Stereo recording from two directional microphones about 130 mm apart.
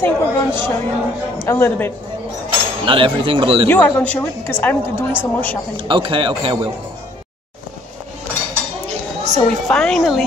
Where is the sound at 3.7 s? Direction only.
15° left (ahead or behind).